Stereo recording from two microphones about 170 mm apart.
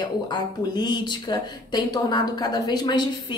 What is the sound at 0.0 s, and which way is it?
Speech, 25° left (ahead or behind).